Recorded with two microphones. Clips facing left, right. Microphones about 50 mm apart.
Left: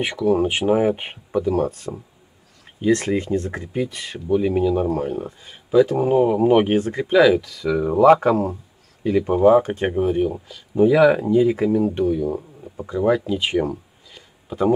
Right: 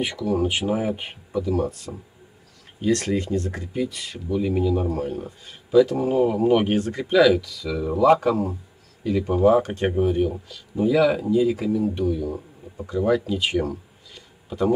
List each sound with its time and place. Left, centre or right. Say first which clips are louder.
0.0 s speech: left 4 dB; left
2.8 s speech: left 3 dB; left
5.0 s speech: left 3 dB; centre
7.6 s speech: left 5 dB; left
9.4 s speech: left 3 dB; centre
10.7 s speech: left 5 dB; left